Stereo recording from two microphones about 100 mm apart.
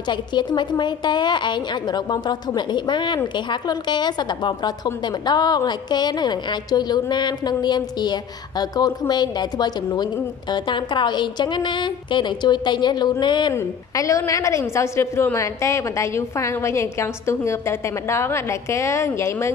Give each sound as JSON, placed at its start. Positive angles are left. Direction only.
{"t": 0.0, "sound": "a woman's voice", "side_deg": 50}
{"t": 13.6, "sound": "a woman's voice", "side_deg": 30}